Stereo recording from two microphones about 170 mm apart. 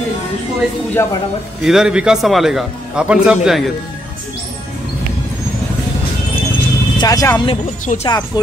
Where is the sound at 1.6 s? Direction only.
5° right (ahead or behind).